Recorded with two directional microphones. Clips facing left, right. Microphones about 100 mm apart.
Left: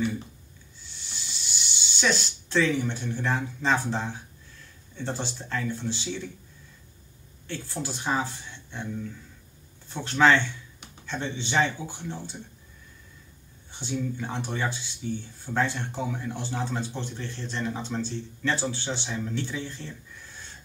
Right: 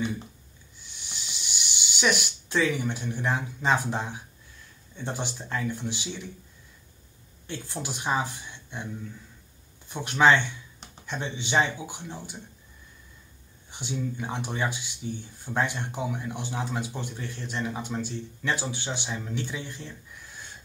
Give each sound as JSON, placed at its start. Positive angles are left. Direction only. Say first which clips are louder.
{"t": 0.7, "sound": "a sound", "louder": "even", "side_deg": -15}
{"t": 4.9, "sound": "speech", "louder": "left 1 dB", "side_deg": -15}
{"t": 7.4, "sound": "speech", "louder": "left 1 dB", "side_deg": -15}
{"t": 9.8, "sound": "speech", "louder": "even", "side_deg": -15}
{"t": 13.7, "sound": "speech", "louder": "left 2 dB", "side_deg": -15}